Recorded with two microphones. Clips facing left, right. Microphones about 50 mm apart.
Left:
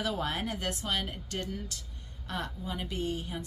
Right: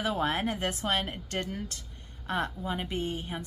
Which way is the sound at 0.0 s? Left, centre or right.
Right.